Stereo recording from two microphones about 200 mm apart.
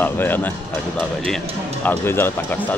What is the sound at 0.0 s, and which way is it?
Speech, 10° left (ahead or behind).